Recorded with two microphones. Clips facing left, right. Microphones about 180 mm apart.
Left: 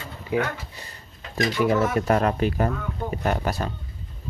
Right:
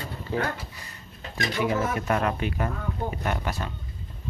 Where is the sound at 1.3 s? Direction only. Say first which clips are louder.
Left 5 dB; 40° left (ahead or behind).